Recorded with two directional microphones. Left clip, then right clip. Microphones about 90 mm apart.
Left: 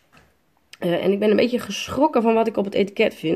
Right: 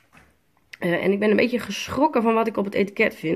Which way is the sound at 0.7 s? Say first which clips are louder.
Left 1 dB; 20° left (ahead or behind).